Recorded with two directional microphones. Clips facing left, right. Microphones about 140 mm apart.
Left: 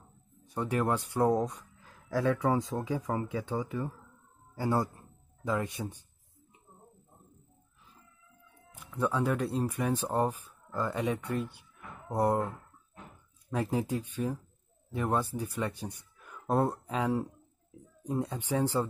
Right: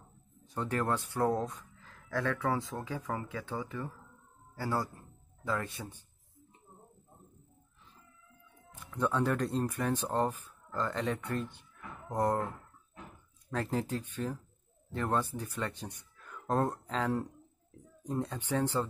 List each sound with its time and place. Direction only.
0.6 s speech: 15° left (ahead or behind)
8.7 s speech: 10° left (ahead or behind)
13.5 s speech: 10° left (ahead or behind)